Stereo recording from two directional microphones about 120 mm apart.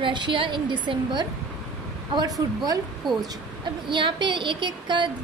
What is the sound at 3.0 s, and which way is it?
Speech, centre (ahead or behind).